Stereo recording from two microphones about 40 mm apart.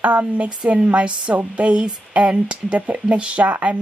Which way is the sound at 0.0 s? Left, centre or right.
Right.